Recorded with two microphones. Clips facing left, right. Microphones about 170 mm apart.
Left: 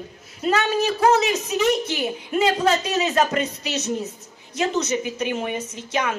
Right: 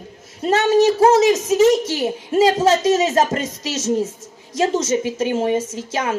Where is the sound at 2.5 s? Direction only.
45° right (ahead or behind).